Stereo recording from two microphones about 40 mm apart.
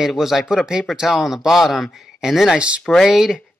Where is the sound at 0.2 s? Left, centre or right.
Centre.